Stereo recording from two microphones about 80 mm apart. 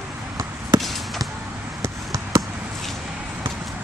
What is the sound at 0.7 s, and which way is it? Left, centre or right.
Basketball bounce, centre.